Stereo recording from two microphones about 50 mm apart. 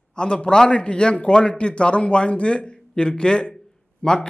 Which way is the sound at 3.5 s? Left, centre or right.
Centre.